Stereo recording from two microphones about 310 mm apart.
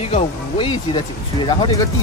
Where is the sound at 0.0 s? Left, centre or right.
Centre.